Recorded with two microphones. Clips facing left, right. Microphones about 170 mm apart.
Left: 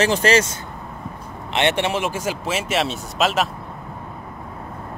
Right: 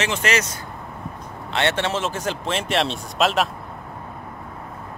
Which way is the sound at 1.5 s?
15° left (ahead or behind).